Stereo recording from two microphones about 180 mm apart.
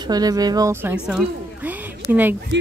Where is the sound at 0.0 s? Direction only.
20° right (ahead or behind).